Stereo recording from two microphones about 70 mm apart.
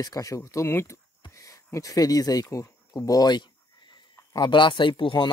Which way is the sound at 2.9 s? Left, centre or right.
Left.